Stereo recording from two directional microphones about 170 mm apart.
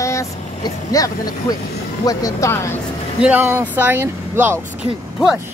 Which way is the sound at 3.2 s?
10° right (ahead or behind).